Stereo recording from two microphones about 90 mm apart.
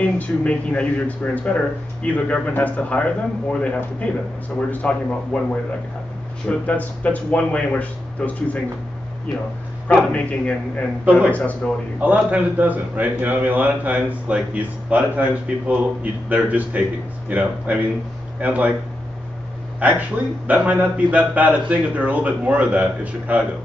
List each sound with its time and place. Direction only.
0.0 s speech: 15° left (ahead or behind)
9.8 s speech: 15° left (ahead or behind)
11.1 s a man's voice: 15° right (ahead or behind)
11.3 s speech: 15° left (ahead or behind)
12.0 s a man's voice: 15° right (ahead or behind)
19.8 s a man's voice: 15° right (ahead or behind)